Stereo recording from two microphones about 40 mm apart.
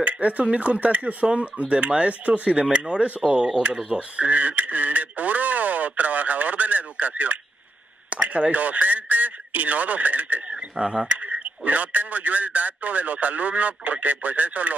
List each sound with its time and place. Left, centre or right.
0.0 s speech: right
3.9 s radio: right
8.1 s speech: right
10.8 s speech: right
11.1 s speech: right